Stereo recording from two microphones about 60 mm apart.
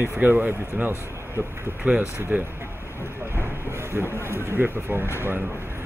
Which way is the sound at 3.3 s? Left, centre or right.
Right.